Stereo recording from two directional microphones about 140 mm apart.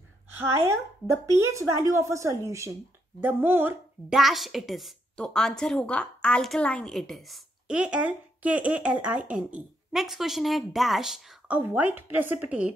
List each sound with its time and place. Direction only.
0.4 s speech: 20° right (ahead or behind)
4.1 s a woman's voice: centre (ahead or behind)